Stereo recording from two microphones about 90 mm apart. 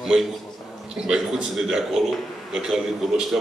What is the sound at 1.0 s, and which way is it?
A man's voice, 5° right (ahead or behind).